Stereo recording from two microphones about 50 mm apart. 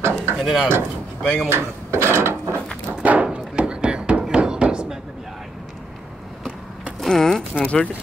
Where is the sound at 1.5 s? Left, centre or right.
Right.